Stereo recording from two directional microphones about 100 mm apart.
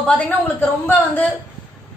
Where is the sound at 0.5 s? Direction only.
20° left (ahead or behind).